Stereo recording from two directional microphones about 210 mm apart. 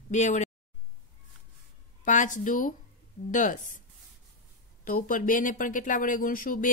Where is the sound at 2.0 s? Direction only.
35° left (ahead or behind).